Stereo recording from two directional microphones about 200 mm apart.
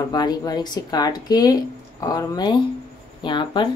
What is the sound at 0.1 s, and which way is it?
Speech, 20° left (ahead or behind).